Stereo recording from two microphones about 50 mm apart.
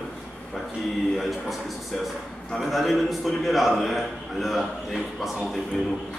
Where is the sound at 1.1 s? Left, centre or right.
Centre.